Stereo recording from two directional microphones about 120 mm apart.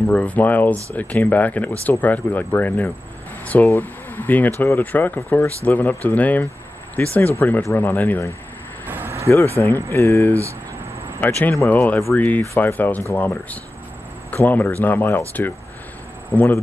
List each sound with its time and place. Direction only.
0.1 s speech: 10° left (ahead or behind)
8.8 s a sound: 15° right (ahead or behind)
9.3 s speech: 20° left (ahead or behind)